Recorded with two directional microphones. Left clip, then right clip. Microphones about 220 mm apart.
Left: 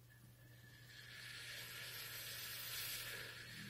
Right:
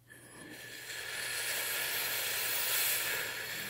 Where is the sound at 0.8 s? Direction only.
45° right (ahead or behind).